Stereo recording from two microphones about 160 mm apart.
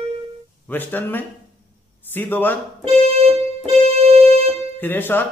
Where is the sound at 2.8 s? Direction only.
40° right (ahead or behind).